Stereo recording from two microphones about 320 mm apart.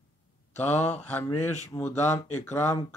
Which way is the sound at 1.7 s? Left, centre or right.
Centre.